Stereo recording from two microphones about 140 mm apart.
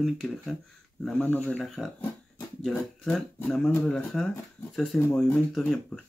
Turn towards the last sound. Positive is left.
turn(degrees=5)  # may be behind; listen again after turning